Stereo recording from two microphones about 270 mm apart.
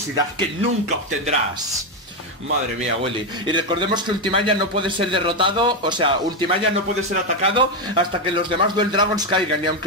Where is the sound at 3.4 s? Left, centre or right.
Centre.